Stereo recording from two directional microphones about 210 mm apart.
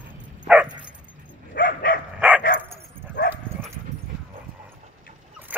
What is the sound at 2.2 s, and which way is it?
Dog, 10° right (ahead or behind).